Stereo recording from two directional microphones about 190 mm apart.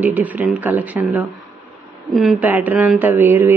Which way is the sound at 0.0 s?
10° right (ahead or behind).